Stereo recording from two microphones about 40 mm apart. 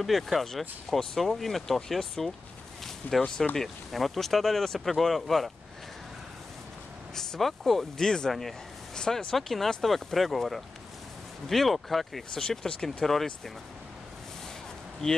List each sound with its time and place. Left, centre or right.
0.0 s speech: centre
3.0 s speech: left
3.5 s speech: centre
7.2 s speech: centre
8.3 s a sound: centre
9.3 s speech: centre
15.0 s speech: centre